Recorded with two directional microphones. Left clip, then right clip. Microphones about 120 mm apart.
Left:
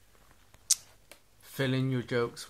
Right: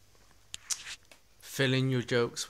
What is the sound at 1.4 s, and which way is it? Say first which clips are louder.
Speech: right 3 dB; 25° right (ahead or behind).